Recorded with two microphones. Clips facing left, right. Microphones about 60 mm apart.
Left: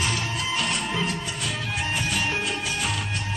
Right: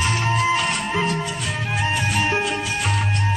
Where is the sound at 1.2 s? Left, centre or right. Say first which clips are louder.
Right 4 dB; centre.